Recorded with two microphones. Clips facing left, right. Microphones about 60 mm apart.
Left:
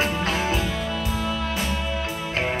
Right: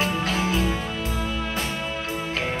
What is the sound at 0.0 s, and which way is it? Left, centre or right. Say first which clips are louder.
Music: even; left.